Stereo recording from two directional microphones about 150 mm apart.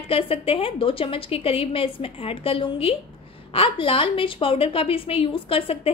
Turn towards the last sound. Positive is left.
turn(degrees=40)  # may be behind; listen again after turning